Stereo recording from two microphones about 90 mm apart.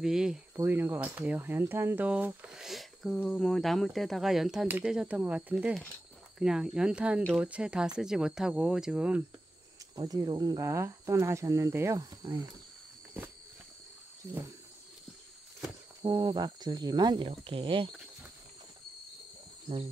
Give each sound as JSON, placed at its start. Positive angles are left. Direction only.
{"t": 0.0, "sound": "speech", "side_deg": -5}
{"t": 0.7, "sound": "speech", "side_deg": -25}
{"t": 2.5, "sound": "speech", "side_deg": -5}
{"t": 4.6, "sound": "speech", "side_deg": -25}
{"t": 9.9, "sound": "speech", "side_deg": -45}
{"t": 10.7, "sound": "speech", "side_deg": -30}
{"t": 12.0, "sound": "speech", "side_deg": -50}
{"t": 16.0, "sound": "speech", "side_deg": -55}